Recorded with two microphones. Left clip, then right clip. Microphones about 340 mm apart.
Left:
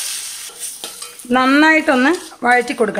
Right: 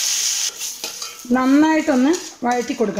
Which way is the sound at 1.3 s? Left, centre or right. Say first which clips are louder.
Left 4 dB; left.